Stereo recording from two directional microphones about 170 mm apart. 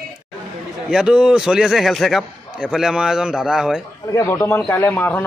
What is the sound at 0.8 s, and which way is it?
A man's voice, centre (ahead or behind).